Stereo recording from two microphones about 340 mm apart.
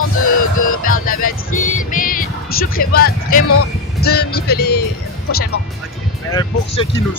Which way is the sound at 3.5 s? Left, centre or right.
Left.